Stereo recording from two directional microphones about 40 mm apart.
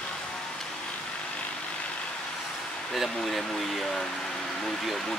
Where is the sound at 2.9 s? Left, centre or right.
Centre.